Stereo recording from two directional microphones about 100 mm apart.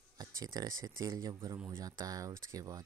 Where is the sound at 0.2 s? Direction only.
40° right (ahead or behind).